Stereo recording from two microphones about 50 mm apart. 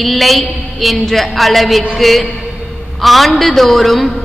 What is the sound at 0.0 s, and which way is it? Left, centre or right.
A woman's voice, centre.